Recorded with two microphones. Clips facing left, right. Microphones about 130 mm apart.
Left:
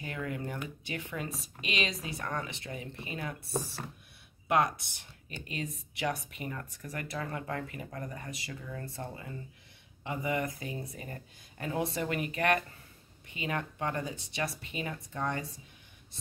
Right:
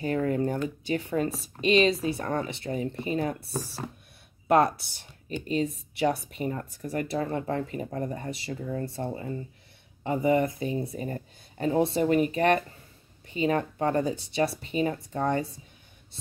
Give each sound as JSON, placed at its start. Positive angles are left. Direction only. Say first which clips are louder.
{"t": 0.0, "sound": "speech", "louder": "right 11 dB", "side_deg": -40}
{"t": 4.5, "sound": "speech", "louder": "right 6 dB", "side_deg": -35}